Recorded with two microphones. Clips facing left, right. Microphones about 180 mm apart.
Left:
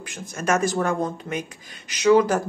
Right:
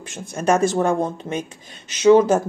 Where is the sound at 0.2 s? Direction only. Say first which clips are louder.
Right 4 dB; 30° right (ahead or behind).